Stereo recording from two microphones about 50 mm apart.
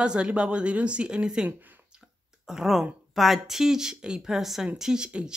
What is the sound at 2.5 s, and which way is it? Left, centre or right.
Speech, centre.